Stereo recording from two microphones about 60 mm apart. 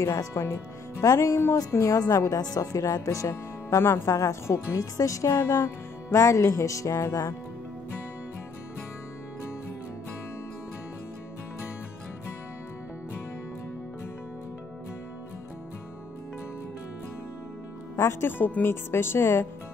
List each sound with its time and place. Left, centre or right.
0.0 s speech: left
1.9 s speech: left
3.8 s speech: left
4.1 s speech: left
17.9 s speech: left
18.4 s speech: left